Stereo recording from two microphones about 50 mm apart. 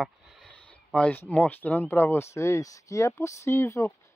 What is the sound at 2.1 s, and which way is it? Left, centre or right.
Speech, left.